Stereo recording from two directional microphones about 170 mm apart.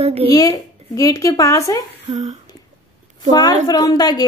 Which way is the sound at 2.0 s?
40° right (ahead or behind).